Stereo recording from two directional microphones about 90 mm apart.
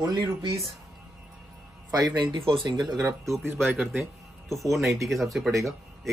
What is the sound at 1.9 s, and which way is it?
Speech, 55° right (ahead or behind).